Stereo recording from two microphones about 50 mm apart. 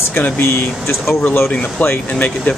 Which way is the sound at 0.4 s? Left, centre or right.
Left.